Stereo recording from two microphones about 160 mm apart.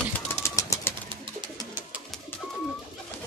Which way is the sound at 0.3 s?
15° left (ahead or behind).